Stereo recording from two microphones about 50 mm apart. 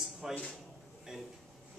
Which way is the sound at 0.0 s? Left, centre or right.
Centre.